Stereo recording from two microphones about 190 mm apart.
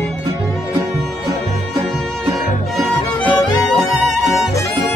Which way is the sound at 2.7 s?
Centre (ahead or behind).